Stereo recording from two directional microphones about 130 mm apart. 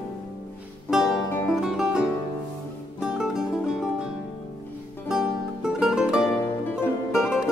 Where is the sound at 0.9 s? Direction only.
5° right (ahead or behind).